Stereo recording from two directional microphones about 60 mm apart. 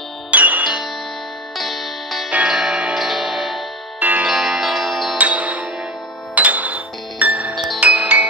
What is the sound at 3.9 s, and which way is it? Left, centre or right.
Music, right.